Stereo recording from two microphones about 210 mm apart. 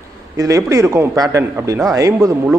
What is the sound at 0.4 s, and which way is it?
A man's voice, 15° right (ahead or behind).